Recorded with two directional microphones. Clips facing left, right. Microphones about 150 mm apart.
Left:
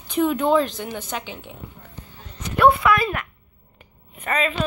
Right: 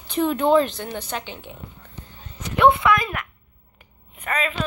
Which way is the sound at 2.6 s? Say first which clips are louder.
Even; 20° right (ahead or behind).